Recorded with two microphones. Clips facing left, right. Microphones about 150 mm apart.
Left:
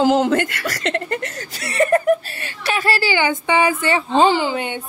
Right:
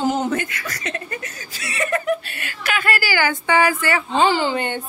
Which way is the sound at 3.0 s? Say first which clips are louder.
Left 2 dB; 20° left (ahead or behind).